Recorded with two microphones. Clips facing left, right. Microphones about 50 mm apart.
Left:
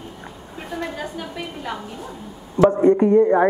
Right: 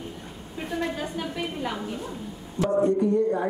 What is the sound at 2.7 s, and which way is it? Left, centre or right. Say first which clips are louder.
Speech: left 2 dB; left.